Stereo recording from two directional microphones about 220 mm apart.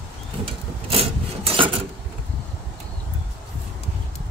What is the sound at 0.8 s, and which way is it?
Filing, 25° right (ahead or behind).